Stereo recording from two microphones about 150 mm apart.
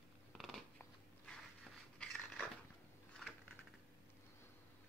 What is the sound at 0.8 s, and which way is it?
Biting, 5° left (ahead or behind).